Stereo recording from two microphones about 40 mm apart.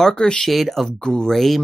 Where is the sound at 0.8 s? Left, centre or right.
Centre.